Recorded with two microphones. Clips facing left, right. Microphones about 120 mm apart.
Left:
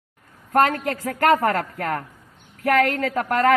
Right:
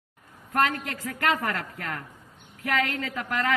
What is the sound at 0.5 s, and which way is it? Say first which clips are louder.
A man's voice: left 7 dB; 50° left (ahead or behind).